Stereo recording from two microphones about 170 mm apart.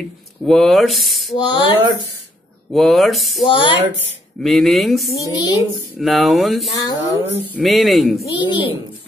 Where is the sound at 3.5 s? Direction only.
30° left (ahead or behind).